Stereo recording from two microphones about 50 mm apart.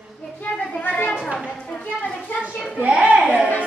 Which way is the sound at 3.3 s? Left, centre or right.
Left.